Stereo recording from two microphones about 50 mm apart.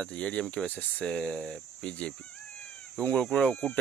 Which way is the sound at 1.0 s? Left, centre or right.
Centre.